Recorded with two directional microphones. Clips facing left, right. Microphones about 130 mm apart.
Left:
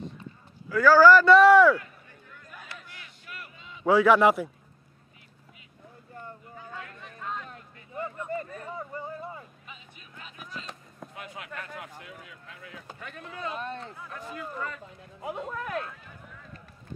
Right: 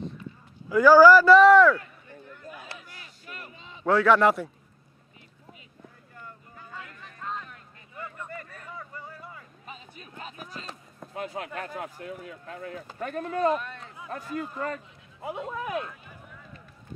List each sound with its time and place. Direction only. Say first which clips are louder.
0.7 s speech: right 2 dB; 15° right (ahead or behind); by 1.8 s 5° left (ahead or behind)
2.7 s a sound: right 1 dB; 30° right (ahead or behind)
3.8 s speech: left 1 dB; 5° left (ahead or behind)
6.5 s a sound: even; centre (ahead or behind)
7.4 s a sound: left 3 dB; 30° left (ahead or behind)
8.2 s vehicle: left 7 dB; 25° left (ahead or behind)
9.7 s music: right 5 dB; 40° right (ahead or behind)
11.1 s speech: right 8 dB; 35° right (ahead or behind)
13.6 s speech: left 4 dB; 30° left (ahead or behind)
14.1 s speech: right 5 dB; 45° right (ahead or behind)
15.1 s speech: right 1 dB; centre (ahead or behind)